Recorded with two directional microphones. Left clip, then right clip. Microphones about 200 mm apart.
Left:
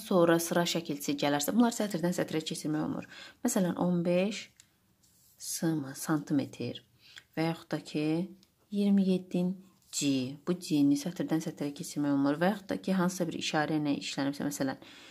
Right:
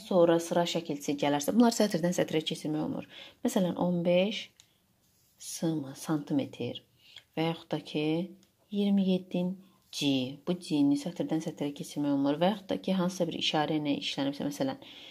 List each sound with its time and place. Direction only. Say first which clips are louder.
0.0 s a woman's voice: right 1 dB; 15° left (ahead or behind)
5.5 s a woman's voice: even; centre (ahead or behind)